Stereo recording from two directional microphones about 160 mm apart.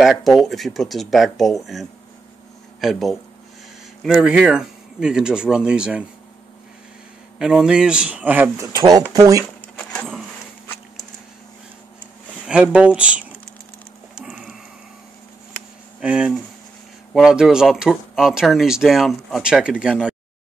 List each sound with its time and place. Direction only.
0.0 s speech: centre (ahead or behind)
7.3 s speech: 5° right (ahead or behind)
8.7 s speech: 25° right (ahead or behind)
9.4 s a sound: 5° left (ahead or behind)
12.4 s speech: 5° right (ahead or behind)
14.1 s tick-tock: 5° right (ahead or behind)
16.0 s speech: 5° right (ahead or behind)